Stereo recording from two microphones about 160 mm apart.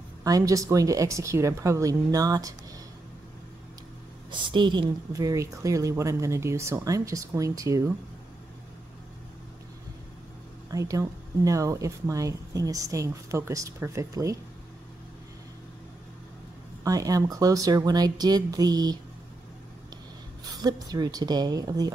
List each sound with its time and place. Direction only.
0.2 s speech: 20° right (ahead or behind)
4.3 s speech: 30° right (ahead or behind)
10.7 s speech: 20° right (ahead or behind)
16.8 s speech: 20° right (ahead or behind)
20.5 s speech: 25° right (ahead or behind)